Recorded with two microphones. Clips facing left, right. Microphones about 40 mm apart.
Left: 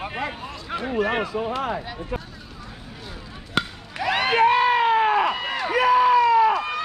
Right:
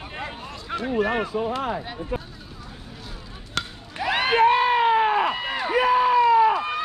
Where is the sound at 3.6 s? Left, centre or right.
Centre.